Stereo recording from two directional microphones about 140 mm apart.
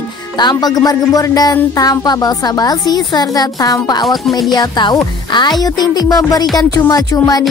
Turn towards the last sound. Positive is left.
turn(degrees=25)  # may be behind; listen again after turning